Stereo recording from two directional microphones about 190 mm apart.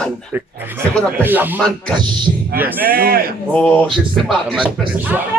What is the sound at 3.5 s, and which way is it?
Speech, 5° left (ahead or behind).